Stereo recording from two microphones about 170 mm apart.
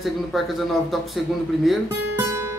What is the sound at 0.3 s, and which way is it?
Speech, centre (ahead or behind).